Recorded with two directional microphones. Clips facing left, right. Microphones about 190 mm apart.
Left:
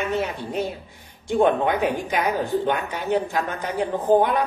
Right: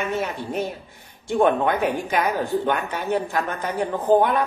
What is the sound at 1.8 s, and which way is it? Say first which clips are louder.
A man's voice: even; 15° left (ahead or behind).